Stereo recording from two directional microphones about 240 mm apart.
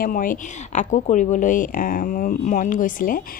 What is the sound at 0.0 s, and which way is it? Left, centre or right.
Speech, left.